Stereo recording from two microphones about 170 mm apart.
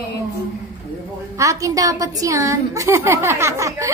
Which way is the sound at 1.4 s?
20° right (ahead or behind).